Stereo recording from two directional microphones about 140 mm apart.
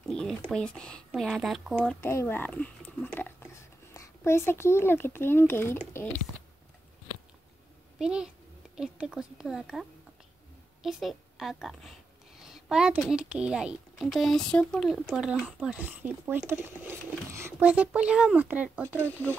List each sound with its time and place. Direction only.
0.0 s a sound: 5° left (ahead or behind)
0.5 s speech: 5° left (ahead or behind)
2.0 s speech: 15° left (ahead or behind)
8.0 s a woman's voice: 5° right (ahead or behind)
18.9 s speech: 10° left (ahead or behind)